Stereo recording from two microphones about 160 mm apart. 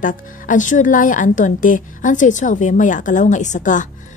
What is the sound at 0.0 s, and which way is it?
A woman's voice, 55° left (ahead or behind).